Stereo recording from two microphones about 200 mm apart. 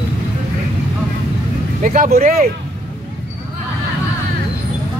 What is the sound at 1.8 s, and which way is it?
Speech, 40° right (ahead or behind).